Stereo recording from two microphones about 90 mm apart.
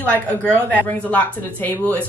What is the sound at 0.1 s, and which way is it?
Speech, 15° left (ahead or behind).